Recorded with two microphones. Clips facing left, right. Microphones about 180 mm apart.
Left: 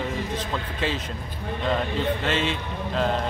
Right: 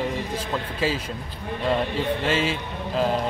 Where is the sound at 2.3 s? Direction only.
5° right (ahead or behind).